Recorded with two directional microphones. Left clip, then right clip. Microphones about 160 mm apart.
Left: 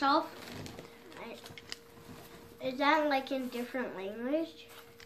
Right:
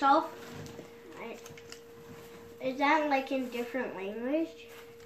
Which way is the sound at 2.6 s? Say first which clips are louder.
Right 1 dB; 5° right (ahead or behind).